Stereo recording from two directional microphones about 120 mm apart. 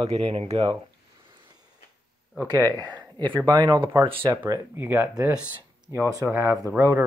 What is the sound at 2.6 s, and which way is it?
Speech, 35° right (ahead or behind).